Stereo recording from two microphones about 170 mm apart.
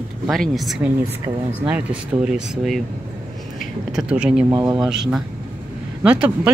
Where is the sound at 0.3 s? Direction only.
Centre (ahead or behind).